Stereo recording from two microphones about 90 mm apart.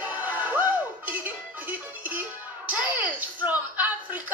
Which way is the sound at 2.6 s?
20° right (ahead or behind).